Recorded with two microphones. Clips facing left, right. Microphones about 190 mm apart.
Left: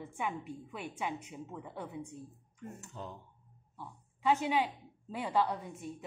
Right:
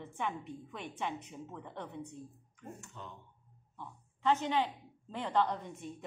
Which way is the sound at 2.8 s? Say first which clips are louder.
Left 4 dB; 35° left (ahead or behind).